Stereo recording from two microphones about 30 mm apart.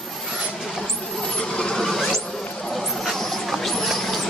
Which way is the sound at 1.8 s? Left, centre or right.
Centre.